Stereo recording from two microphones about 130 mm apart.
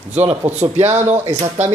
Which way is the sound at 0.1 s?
15° right (ahead or behind).